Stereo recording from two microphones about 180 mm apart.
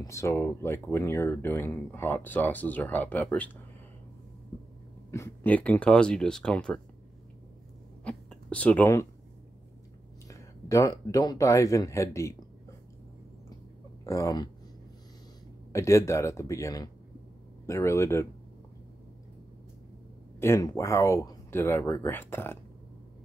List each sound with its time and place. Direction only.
0.0 s speech: 15° left (ahead or behind)
5.1 s speech: 10° left (ahead or behind)
8.0 s a sound: 5° left (ahead or behind)
10.3 s speech: 20° left (ahead or behind)
14.0 s speech: 15° left (ahead or behind)
15.7 s speech: 15° left (ahead or behind)
20.3 s speech: 15° left (ahead or behind)